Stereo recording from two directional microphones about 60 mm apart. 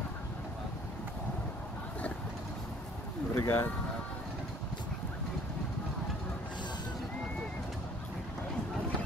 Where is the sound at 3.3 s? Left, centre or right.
Left.